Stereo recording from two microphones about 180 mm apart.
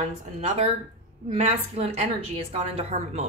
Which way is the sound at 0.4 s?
35° right (ahead or behind).